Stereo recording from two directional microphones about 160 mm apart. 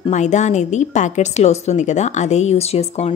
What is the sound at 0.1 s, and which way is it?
A woman's voice, 45° left (ahead or behind).